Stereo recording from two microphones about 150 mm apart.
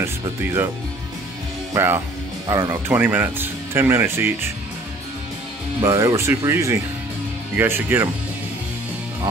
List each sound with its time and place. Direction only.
0.0 s speech: 15° right (ahead or behind)
1.7 s speech: 15° right (ahead or behind)
5.8 s speech: 20° right (ahead or behind)